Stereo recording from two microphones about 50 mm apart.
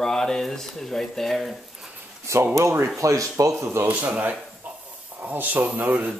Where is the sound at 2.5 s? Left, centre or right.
Right.